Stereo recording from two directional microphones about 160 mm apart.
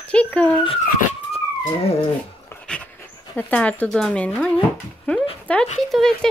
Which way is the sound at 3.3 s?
10° left (ahead or behind).